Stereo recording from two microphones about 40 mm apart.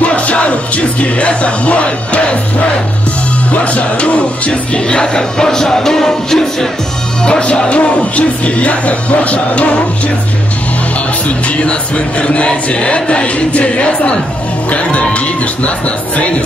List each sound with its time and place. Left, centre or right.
0.0 s music: left
3.5 s music: left; by 6.7 s centre
7.2 s music: left
7.7 s music: left
11.2 s music: left